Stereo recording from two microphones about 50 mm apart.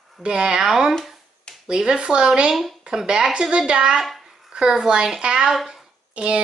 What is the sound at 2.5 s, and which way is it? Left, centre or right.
Speech, centre.